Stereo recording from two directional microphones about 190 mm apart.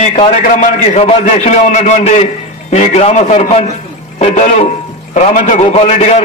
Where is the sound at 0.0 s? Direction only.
35° left (ahead or behind).